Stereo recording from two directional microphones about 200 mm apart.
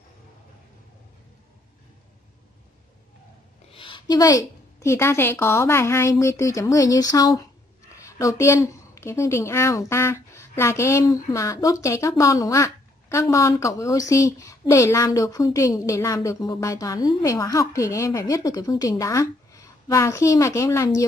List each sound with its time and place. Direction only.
3.7 s speech: 25° left (ahead or behind)